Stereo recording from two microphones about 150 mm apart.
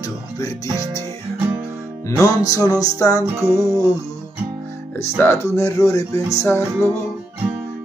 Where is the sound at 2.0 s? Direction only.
20° left (ahead or behind).